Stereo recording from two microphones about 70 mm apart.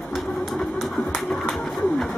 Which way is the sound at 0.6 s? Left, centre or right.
Centre.